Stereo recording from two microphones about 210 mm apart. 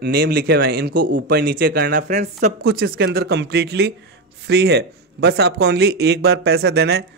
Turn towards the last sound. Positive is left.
turn(degrees=-50)  # may be behind; listen again after turning